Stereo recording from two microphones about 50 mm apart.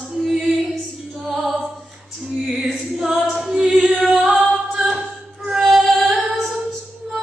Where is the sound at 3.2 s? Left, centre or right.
Centre.